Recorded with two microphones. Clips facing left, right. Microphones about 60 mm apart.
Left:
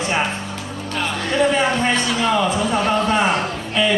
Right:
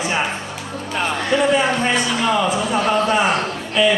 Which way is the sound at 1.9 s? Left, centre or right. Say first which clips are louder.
Even; centre.